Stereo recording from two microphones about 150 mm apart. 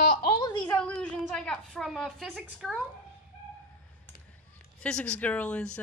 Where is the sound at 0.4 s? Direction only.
30° left (ahead or behind).